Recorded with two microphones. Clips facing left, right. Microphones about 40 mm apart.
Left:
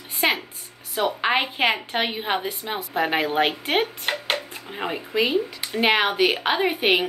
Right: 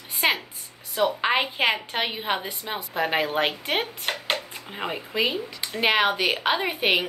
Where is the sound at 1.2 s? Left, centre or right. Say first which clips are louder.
Left 1 dB; centre.